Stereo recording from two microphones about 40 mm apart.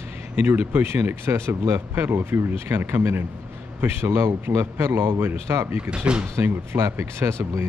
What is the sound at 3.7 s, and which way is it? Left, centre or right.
Speech, right.